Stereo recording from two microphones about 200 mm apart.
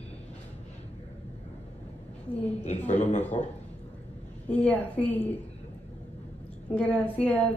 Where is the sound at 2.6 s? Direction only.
35° left (ahead or behind).